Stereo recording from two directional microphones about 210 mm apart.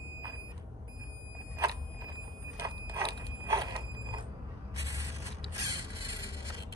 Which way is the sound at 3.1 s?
15° right (ahead or behind).